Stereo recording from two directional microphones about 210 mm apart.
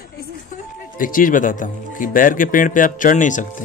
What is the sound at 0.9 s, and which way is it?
Speech, 40° left (ahead or behind).